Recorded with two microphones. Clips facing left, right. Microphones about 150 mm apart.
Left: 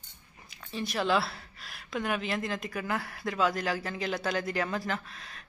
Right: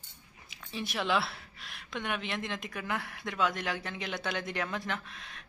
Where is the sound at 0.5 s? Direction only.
Centre (ahead or behind).